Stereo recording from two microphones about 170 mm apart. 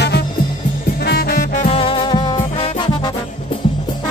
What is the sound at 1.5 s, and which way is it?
Music, 40° left (ahead or behind).